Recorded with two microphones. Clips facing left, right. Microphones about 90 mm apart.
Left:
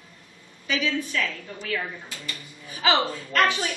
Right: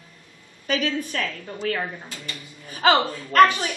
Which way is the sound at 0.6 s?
45° right (ahead or behind).